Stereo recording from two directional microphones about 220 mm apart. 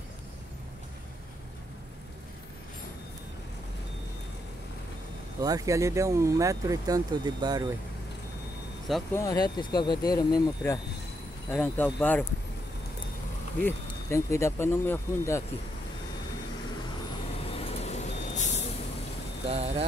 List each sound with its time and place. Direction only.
5.4 s speech: 15° right (ahead or behind)
9.1 s speech: 15° left (ahead or behind)
13.6 s speech: 10° left (ahead or behind)
17.5 s vehicle: 25° left (ahead or behind)